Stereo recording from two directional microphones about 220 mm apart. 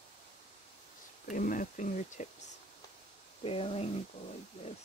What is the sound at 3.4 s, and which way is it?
Speech, 25° left (ahead or behind).